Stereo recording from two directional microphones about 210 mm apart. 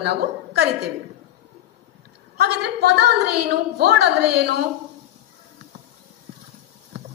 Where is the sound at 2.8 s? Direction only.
50° right (ahead or behind).